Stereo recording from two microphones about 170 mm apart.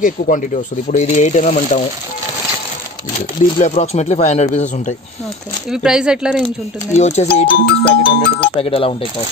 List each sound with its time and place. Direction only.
0.0 s speech: 50° left (ahead or behind)
3.2 s speech: 45° left (ahead or behind)
5.7 s speech: 5° right (ahead or behind)
6.9 s speech: 40° left (ahead or behind)